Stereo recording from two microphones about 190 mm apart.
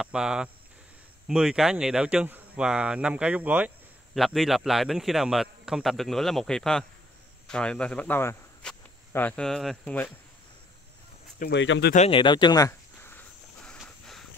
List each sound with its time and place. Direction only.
0.0 s speech: 5° right (ahead or behind)
11.5 s speech: 75° left (ahead or behind)
11.9 s speech: 35° left (ahead or behind)
12.2 s speech: 25° left (ahead or behind)
13.7 s a sound: 5° left (ahead or behind)